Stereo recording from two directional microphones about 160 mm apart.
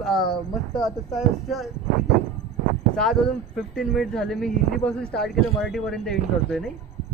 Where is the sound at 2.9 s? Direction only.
5° left (ahead or behind).